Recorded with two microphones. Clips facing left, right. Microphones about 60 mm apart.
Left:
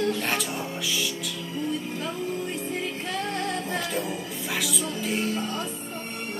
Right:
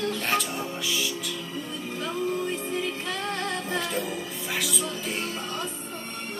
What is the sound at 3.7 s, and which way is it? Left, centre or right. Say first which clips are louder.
Music: even; centre.